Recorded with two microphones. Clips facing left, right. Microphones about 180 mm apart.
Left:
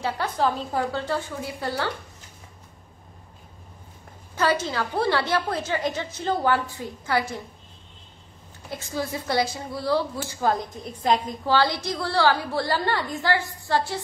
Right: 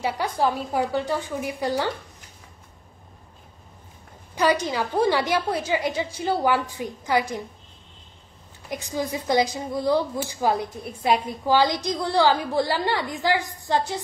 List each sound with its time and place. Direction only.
0.0 s a woman's voice: 10° right (ahead or behind)
4.4 s a woman's voice: 15° right (ahead or behind)
8.6 s a woman's voice: 15° right (ahead or behind)